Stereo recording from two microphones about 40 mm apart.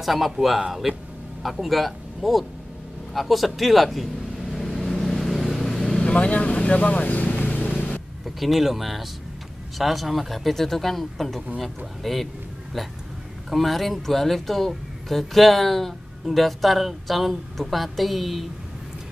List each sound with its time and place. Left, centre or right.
0.0 s speech: centre
3.1 s vehicle: centre
6.1 s speech: left
8.4 s speech: centre
13.5 s speech: centre